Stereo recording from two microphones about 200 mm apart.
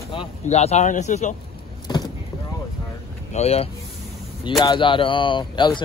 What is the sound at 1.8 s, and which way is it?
Vehicle, 20° left (ahead or behind).